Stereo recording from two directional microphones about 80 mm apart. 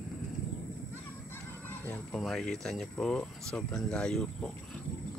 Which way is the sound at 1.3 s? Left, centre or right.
Left.